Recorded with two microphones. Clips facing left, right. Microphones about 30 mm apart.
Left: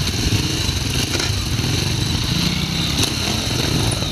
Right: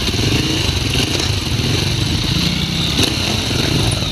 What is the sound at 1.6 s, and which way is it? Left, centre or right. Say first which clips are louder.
Vehicle: right 3 dB; right.